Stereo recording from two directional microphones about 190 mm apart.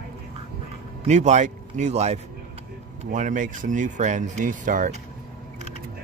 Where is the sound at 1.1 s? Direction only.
40° right (ahead or behind).